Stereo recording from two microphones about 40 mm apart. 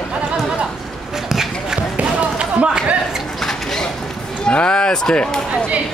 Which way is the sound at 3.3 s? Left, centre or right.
Centre.